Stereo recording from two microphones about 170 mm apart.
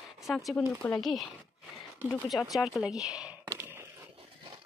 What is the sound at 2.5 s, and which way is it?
Speech, centre (ahead or behind).